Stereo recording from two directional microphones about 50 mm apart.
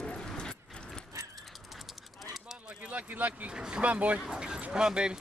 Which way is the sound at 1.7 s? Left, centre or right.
Centre.